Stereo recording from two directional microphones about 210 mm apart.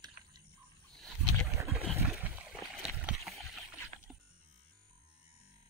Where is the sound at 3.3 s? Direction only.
Centre (ahead or behind).